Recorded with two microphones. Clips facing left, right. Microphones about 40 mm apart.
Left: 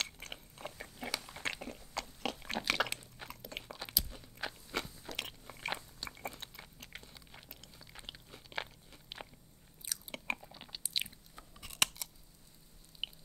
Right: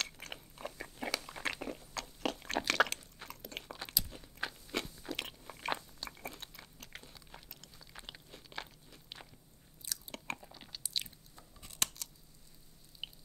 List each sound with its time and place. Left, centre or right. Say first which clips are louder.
0.0 s biting: even; centre
1.2 s crunch: right 2 dB; centre
4.6 s biting: right 1 dB; centre
7.3 s crunch: even; centre
9.8 s chewing: left 3 dB; centre
13.0 s chewing: left 4 dB; left